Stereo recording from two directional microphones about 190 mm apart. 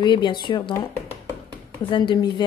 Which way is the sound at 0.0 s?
25° left (ahead or behind).